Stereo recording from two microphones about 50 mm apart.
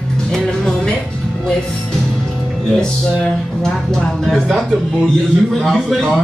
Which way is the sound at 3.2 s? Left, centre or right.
Centre.